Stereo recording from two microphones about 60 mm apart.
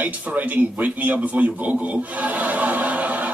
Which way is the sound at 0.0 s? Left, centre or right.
Right.